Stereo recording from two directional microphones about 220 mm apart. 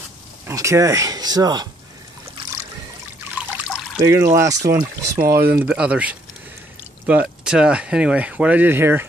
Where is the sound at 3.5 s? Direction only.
5° right (ahead or behind).